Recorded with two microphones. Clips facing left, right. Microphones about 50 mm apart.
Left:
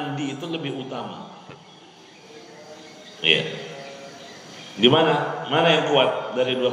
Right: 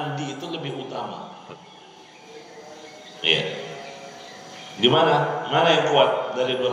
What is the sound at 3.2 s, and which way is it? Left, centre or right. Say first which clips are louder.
Speech: left 2 dB; centre.